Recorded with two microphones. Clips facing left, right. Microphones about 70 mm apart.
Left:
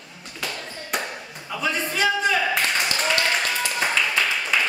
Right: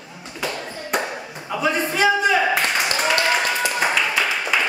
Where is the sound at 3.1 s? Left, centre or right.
Centre.